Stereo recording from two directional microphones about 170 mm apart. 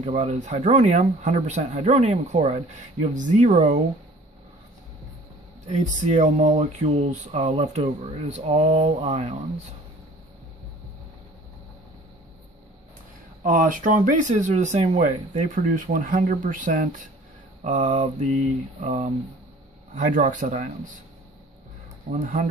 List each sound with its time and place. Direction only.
0.0 s speech: 40° right (ahead or behind)
5.7 s speech: 45° right (ahead or behind)
13.4 s speech: 50° right (ahead or behind)
17.6 s speech: 40° right (ahead or behind)
22.1 s speech: 45° right (ahead or behind)